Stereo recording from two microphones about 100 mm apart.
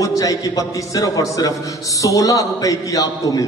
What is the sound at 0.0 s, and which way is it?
A man's voice, 35° left (ahead or behind).